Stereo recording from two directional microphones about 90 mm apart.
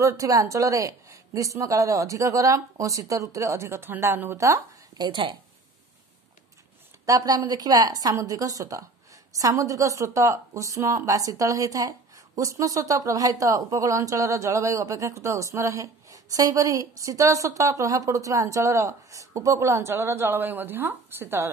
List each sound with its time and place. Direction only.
0.0 s speech: 40° right (ahead or behind)
4.9 s a woman's voice: 50° right (ahead or behind)
7.1 s a woman's voice: 45° right (ahead or behind); by 21.5 s 25° right (ahead or behind)